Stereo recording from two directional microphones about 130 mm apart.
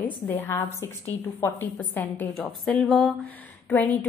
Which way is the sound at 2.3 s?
5° left (ahead or behind).